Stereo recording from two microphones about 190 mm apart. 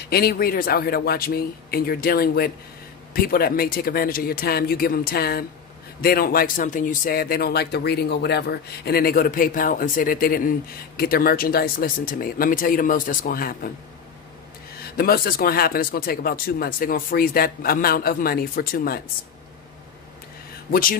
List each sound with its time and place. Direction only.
0.0 s speech: 55° left (ahead or behind)
15.0 s speech: 50° left (ahead or behind)
20.7 s speech: 50° left (ahead or behind)